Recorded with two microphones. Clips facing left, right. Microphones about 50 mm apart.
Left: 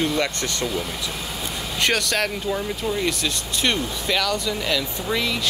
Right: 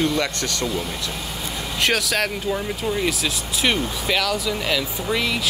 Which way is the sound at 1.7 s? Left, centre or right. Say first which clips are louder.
Right 1 dB; centre.